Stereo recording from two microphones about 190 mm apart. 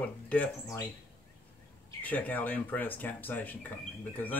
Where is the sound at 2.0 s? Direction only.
10° left (ahead or behind).